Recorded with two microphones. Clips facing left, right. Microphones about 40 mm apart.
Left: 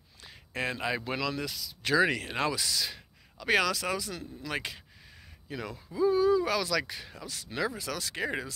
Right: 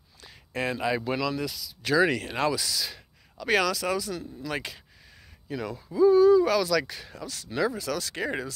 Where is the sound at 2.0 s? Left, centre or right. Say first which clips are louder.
Right 3 dB; left.